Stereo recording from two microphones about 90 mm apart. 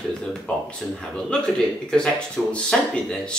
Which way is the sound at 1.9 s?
10° left (ahead or behind).